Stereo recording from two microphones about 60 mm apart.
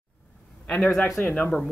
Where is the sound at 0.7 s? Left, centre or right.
Centre.